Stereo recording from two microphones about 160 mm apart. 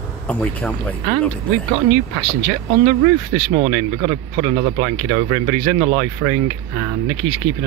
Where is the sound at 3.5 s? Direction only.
35° right (ahead or behind).